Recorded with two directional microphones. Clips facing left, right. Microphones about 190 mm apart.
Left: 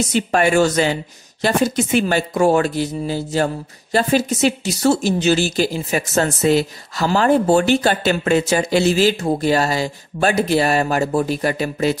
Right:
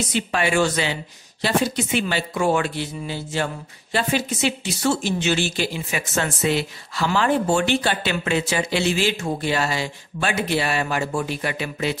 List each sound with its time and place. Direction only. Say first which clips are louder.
0.1 s a woman's voice: left 6 dB; 45° left (ahead or behind)